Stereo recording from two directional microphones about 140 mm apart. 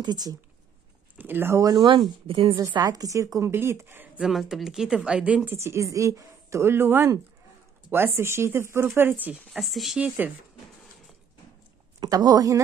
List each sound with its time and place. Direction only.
0.0 s a woman's voice: 30° right (ahead or behind)
1.1 s speech: 15° right (ahead or behind)
1.7 s speech: 35° right (ahead or behind)
2.6 s a woman's voice: 25° right (ahead or behind)
4.2 s speech: centre (ahead or behind)
8.2 s speech: 20° right (ahead or behind)
9.5 s speech: centre (ahead or behind)
12.0 s a woman's voice: 30° right (ahead or behind)